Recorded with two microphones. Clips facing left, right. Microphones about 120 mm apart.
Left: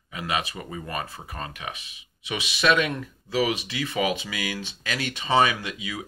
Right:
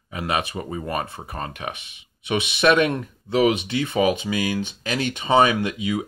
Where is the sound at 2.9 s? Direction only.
25° right (ahead or behind).